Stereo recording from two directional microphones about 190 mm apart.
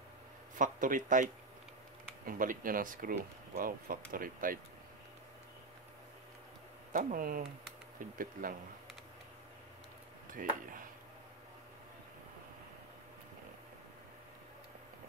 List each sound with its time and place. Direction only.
0.6 s speech: 45° right (ahead or behind)
2.2 s speech: 45° right (ahead or behind)
6.9 s speech: 45° right (ahead or behind)
10.3 s speech: 45° right (ahead or behind)